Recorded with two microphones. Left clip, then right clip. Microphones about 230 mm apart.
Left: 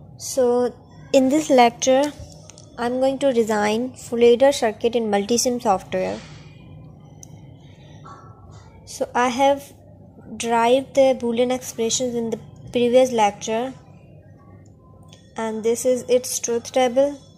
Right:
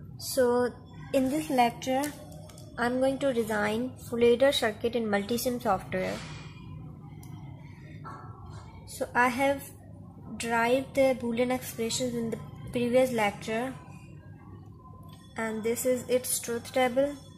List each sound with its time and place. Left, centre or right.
0.2 s a woman's voice: centre
1.1 s a woman's voice: left
2.7 s a woman's voice: centre
8.9 s a woman's voice: left
15.3 s a woman's voice: left